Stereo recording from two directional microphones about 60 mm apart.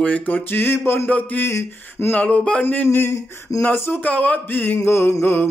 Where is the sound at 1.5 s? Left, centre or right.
Left.